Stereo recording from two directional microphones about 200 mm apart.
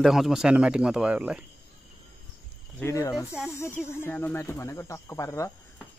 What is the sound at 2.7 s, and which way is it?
Speech, 15° left (ahead or behind).